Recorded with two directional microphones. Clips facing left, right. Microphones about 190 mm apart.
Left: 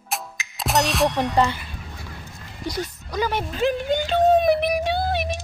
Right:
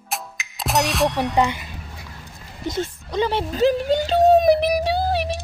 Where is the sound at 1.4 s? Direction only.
15° right (ahead or behind).